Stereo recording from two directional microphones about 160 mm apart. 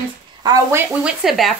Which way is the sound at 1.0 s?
Centre (ahead or behind).